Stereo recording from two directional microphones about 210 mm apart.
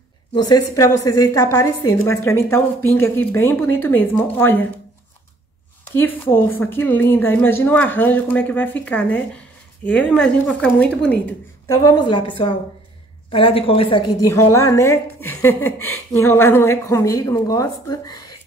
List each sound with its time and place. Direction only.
0.3 s a woman's voice: 20° left (ahead or behind)
5.9 s a woman's voice: 10° left (ahead or behind)